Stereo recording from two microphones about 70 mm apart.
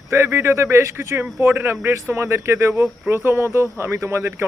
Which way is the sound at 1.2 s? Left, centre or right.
Right.